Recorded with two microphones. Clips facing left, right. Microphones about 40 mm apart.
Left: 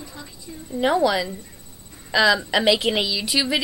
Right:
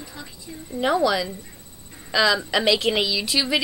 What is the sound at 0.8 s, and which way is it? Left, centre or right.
A woman's voice, centre.